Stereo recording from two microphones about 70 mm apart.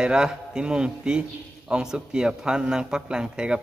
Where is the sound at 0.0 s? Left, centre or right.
Centre.